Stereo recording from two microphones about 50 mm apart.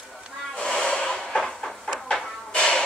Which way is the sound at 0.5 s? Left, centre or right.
Centre.